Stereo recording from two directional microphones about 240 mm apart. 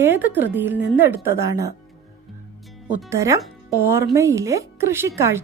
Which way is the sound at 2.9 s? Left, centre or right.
Centre.